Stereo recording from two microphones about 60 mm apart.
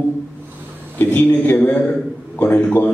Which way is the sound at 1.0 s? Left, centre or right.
Left.